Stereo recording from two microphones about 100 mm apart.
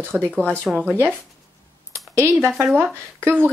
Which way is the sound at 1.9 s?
25° right (ahead or behind).